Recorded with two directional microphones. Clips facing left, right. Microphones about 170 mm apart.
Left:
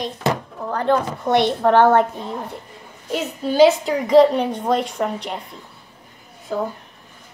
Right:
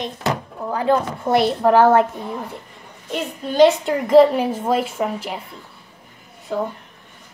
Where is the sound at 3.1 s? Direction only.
5° left (ahead or behind).